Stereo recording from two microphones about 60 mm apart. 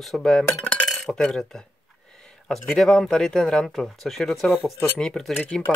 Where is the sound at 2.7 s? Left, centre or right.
Centre.